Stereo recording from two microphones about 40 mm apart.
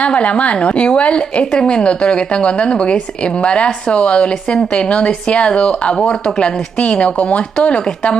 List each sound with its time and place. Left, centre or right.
0.0 s a woman's voice: left